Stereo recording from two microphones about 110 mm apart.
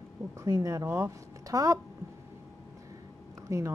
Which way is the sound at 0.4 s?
30° right (ahead or behind).